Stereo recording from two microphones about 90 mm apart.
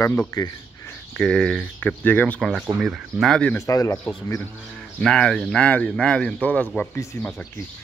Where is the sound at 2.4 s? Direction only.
Centre (ahead or behind).